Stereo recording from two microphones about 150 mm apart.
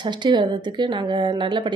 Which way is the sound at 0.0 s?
30° right (ahead or behind).